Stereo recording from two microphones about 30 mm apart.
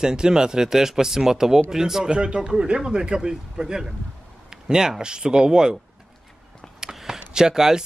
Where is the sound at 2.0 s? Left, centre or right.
Right.